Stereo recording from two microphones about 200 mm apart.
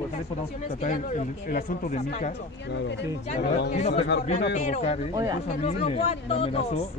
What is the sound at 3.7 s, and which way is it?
Speech, 35° left (ahead or behind).